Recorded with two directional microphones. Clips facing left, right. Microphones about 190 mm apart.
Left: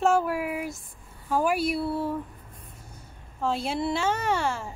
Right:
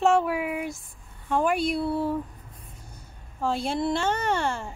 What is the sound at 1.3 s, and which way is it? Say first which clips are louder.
Speech: right 1 dB; 5° left (ahead or behind).